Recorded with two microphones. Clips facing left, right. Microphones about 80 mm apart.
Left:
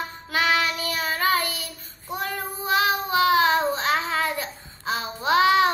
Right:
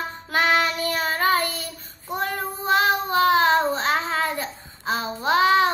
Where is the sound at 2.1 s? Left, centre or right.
Right.